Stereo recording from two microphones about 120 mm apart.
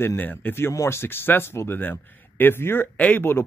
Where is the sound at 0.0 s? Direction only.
15° left (ahead or behind).